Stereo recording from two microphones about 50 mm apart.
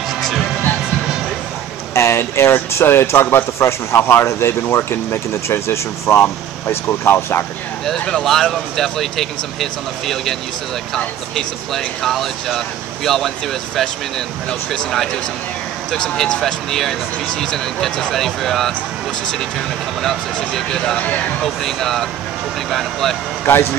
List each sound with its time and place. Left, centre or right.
2.0 s speech: left
3.5 s speech: left
8.0 s speech: centre
11.3 s speech: centre
20.5 s speech: centre
23.4 s speech: left